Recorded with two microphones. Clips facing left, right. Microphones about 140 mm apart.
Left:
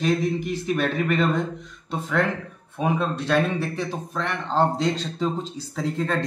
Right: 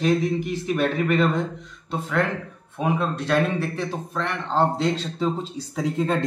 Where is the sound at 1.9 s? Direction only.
5° right (ahead or behind).